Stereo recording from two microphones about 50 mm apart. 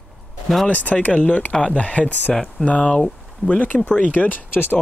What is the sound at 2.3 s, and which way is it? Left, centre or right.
Speech, centre.